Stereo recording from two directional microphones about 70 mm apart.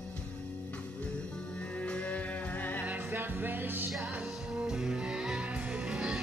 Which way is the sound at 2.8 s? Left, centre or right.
Right.